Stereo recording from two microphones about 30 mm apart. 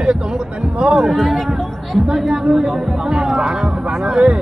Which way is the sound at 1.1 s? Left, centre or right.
Centre.